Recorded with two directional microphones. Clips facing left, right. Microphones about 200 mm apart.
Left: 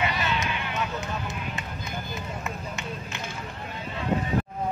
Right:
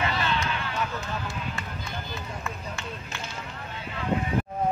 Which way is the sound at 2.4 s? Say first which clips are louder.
Left 1 dB; 20° left (ahead or behind).